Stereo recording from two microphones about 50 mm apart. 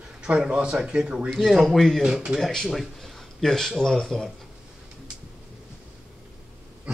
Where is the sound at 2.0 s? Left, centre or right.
Centre.